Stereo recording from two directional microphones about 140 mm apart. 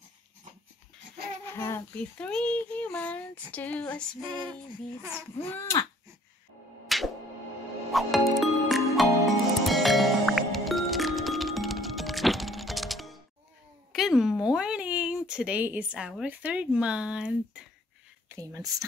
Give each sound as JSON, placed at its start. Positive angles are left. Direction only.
{"t": 1.5, "sound": "a child's voice", "side_deg": 20}
{"t": 5.5, "sound": "speech", "side_deg": 20}
{"t": 6.9, "sound": "music", "side_deg": 0}
{"t": 13.9, "sound": "speech", "side_deg": 0}
{"t": 18.3, "sound": "speech", "side_deg": -25}